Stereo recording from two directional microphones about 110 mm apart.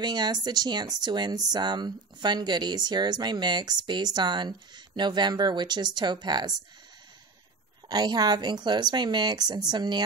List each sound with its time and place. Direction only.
0.0 s speech: 40° right (ahead or behind)
7.9 s speech: 40° right (ahead or behind)